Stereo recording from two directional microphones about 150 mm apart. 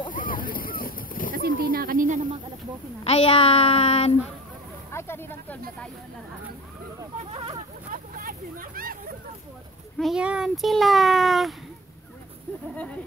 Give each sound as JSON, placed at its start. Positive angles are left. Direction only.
{"t": 0.1, "sound": "boat", "side_deg": 65}
{"t": 1.3, "sound": "a sound", "side_deg": -75}
{"t": 3.0, "sound": "a child's voice", "side_deg": 40}
{"t": 4.9, "sound": "speech", "side_deg": 15}
{"t": 7.3, "sound": "speech", "side_deg": -40}
{"t": 7.9, "sound": "vehicle", "side_deg": -70}
{"t": 9.9, "sound": "a child's voice", "side_deg": 0}